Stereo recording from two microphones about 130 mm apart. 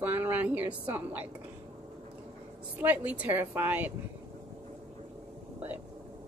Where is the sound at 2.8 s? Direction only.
10° right (ahead or behind).